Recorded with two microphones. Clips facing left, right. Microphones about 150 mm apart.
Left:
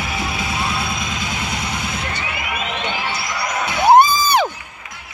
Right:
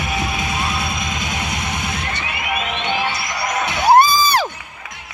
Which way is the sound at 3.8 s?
20° left (ahead or behind).